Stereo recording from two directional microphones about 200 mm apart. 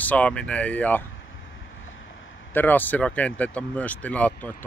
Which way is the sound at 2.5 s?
10° left (ahead or behind).